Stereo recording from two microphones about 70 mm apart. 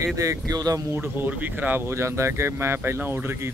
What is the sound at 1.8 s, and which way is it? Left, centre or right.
Speech, right.